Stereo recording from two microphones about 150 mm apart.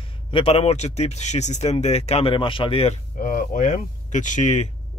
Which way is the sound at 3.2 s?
60° left (ahead or behind).